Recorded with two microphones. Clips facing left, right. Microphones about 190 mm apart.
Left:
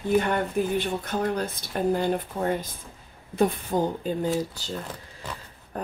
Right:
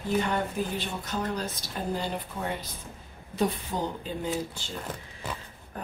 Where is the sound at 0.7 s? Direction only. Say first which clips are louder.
Left 6 dB; 55° left (ahead or behind).